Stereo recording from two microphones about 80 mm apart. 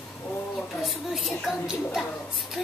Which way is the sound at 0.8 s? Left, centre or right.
Centre.